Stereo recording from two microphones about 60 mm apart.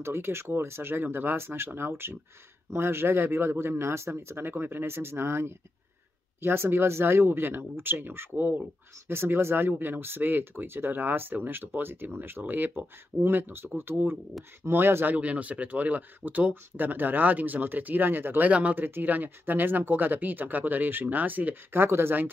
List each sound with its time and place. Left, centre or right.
0.0 s speech: right
15.1 s speech: right
18.5 s speech: right
21.8 s speech: right